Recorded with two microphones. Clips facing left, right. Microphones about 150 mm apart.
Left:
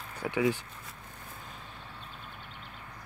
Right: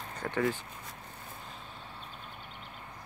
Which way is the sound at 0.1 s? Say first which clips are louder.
Left 3 dB; 10° left (ahead or behind).